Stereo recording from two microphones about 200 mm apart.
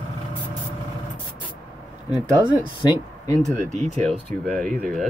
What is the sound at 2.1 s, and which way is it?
Speech, 5° right (ahead or behind).